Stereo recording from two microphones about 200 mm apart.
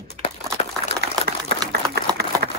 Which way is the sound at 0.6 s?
30° left (ahead or behind).